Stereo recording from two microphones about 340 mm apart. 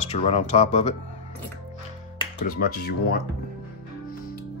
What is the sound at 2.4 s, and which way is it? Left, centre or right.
Speech, left.